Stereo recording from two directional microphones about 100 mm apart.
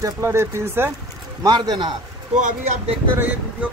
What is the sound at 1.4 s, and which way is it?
Speech, 45° right (ahead or behind).